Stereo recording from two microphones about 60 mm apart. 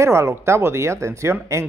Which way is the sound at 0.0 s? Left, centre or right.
Right.